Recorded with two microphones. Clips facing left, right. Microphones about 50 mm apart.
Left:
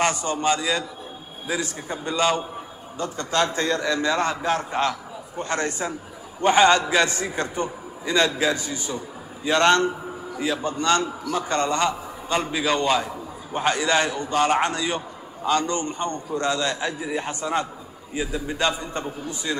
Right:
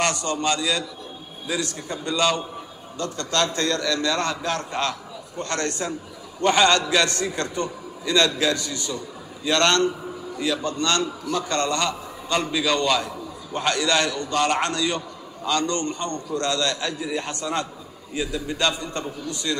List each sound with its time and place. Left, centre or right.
0.0 s a man's voice: centre
1.9 s a man's voice: centre